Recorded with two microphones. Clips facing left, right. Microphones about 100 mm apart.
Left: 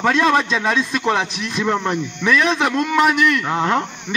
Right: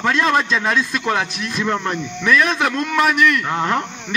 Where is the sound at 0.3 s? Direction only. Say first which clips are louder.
Even; 5° left (ahead or behind).